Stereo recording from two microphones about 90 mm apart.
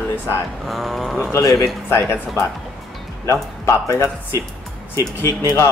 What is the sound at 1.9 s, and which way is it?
A man's voice, 30° left (ahead or behind).